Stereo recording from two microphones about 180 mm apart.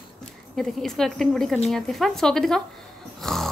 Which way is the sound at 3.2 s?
Centre (ahead or behind).